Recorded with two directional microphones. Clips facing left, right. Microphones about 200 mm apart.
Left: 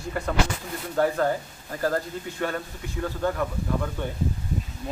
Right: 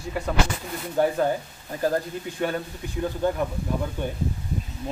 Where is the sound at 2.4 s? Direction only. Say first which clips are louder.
Right 2 dB; 20° right (ahead or behind).